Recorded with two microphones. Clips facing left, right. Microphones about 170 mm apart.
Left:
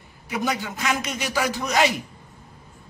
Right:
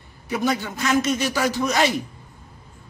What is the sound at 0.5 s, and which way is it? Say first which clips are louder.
A man's voice: right 4 dB; 15° left (ahead or behind).